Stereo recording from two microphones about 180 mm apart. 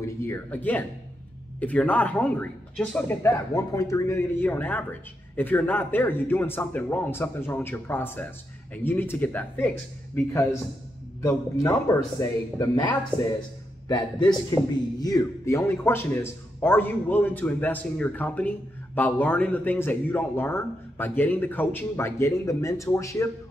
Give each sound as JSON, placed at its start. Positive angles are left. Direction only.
{"t": 0.0, "sound": "speech", "side_deg": 10}
{"t": 11.2, "sound": "a man's voice", "side_deg": 15}